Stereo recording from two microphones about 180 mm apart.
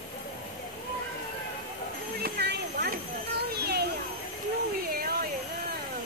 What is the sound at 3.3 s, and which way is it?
Children playing, 60° right (ahead or behind).